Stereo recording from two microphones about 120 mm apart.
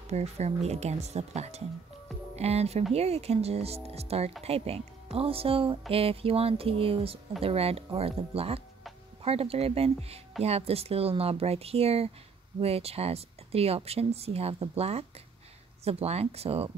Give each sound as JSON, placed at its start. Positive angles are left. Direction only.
{"t": 0.1, "sound": "speech", "side_deg": -65}